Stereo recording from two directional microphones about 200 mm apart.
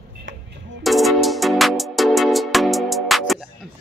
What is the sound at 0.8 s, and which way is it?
Music, centre (ahead or behind).